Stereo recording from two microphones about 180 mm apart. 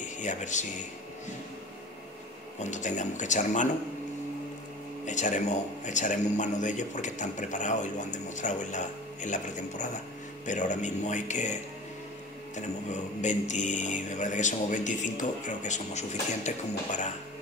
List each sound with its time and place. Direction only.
0.2 s mantra: 45° left (ahead or behind)
2.6 s mantra: 40° left (ahead or behind)
5.0 s speech: 45° left (ahead or behind)
5.9 s mantra: 40° left (ahead or behind)
10.4 s speech: 45° left (ahead or behind)
12.5 s mantra: 40° left (ahead or behind)